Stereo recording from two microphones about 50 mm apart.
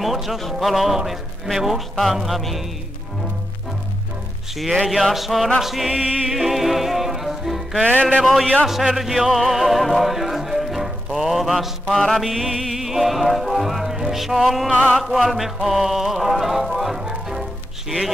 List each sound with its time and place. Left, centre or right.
0.0 s speech: centre
4.6 s speech: centre
5.9 s music: centre
6.3 s music: centre
7.8 s music: left
8.6 s music: centre